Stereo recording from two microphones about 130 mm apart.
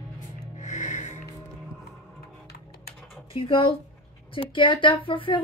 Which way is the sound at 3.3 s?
45° left (ahead or behind).